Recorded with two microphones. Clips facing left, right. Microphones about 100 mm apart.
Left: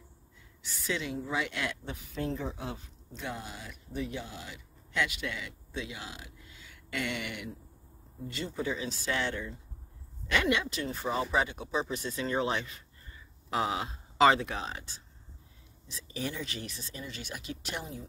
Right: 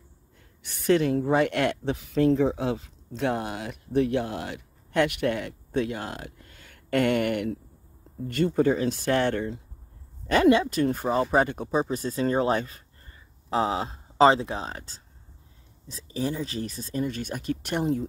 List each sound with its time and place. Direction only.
0.6 s speech: 55° right (ahead or behind)
10.2 s speech: 40° right (ahead or behind)